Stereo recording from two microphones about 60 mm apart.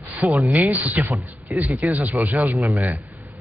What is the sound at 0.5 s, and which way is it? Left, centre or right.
Speech, right.